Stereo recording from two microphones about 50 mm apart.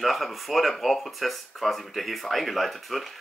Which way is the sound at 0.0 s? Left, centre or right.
Centre.